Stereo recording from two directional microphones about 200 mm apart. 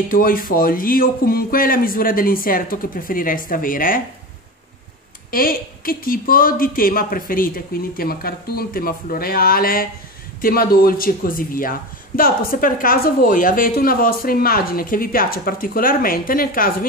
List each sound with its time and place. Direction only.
0.1 s speech: 45° left (ahead or behind)
5.3 s speech: 45° left (ahead or behind)